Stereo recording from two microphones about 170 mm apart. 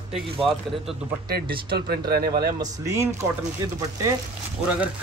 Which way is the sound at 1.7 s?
70° right (ahead or behind).